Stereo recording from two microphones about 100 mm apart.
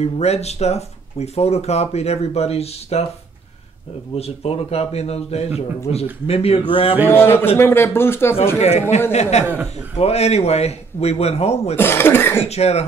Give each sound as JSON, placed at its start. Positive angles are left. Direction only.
{"t": 0.0, "sound": "speech", "side_deg": 90}
{"t": 4.1, "sound": "speech", "side_deg": 90}
{"t": 6.7, "sound": "speech", "side_deg": 75}
{"t": 7.1, "sound": "a man's voice", "side_deg": 25}
{"t": 8.5, "sound": "speech", "side_deg": 90}
{"t": 11.7, "sound": "speech", "side_deg": 20}
{"t": 12.4, "sound": "speech", "side_deg": 90}